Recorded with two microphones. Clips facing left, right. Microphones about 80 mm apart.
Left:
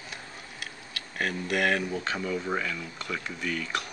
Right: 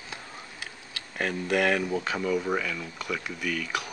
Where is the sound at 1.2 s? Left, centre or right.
Centre.